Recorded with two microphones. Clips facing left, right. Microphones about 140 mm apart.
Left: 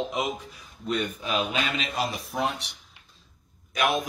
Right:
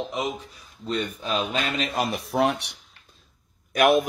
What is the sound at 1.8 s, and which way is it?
Speech, 55° right (ahead or behind).